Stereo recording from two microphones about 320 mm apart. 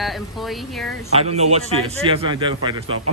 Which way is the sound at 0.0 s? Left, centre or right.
Centre.